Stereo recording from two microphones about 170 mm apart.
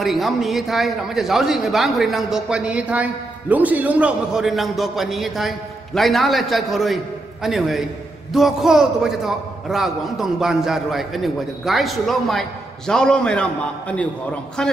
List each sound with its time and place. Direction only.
0.0 s a man's voice: centre (ahead or behind)